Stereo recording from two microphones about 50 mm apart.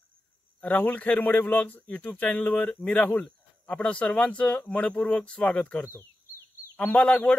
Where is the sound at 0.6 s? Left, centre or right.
Left.